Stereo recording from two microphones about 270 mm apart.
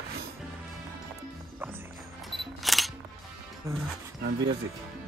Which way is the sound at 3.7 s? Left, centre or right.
Centre.